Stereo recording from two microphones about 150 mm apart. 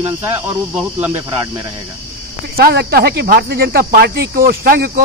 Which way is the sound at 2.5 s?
90° right.